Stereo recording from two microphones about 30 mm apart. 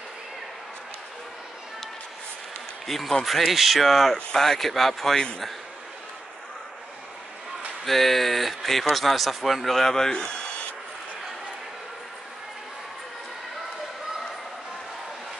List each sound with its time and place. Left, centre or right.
2.9 s speech: centre
5.1 s a man's voice: left
7.8 s speech: centre
10.1 s rub: left